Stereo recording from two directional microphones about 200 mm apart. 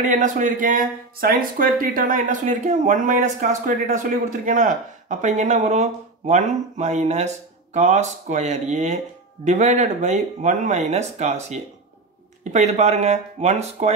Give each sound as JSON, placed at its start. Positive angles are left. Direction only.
{"t": 0.0, "sound": "speech", "side_deg": -40}